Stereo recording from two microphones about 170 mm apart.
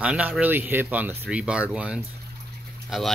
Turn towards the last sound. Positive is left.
turn(degrees=0)  # may be behind; listen again after turning